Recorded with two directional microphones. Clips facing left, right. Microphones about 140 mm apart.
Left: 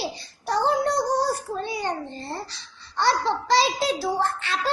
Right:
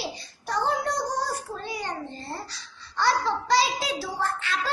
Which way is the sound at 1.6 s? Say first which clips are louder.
Left 5 dB; 25° left (ahead or behind).